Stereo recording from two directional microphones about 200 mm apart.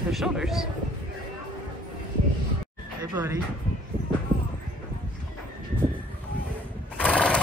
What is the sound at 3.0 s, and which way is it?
Speech, 15° right (ahead or behind).